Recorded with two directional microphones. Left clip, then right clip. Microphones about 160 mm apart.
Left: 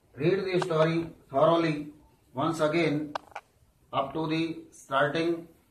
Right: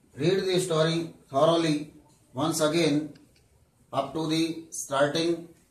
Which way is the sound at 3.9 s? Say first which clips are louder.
Right 1 dB; 25° right (ahead or behind).